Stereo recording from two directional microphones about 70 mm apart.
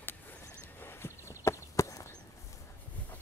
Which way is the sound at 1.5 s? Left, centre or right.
Left.